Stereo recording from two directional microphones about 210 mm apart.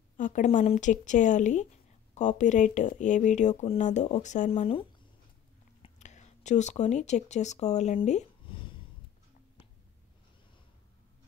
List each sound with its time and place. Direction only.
0.2 s speech: 35° left (ahead or behind)